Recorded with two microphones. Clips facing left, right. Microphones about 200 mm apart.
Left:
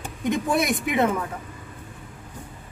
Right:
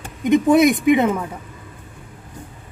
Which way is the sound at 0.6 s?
Centre (ahead or behind).